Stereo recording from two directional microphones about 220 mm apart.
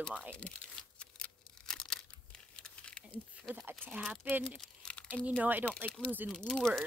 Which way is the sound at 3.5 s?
10° right (ahead or behind).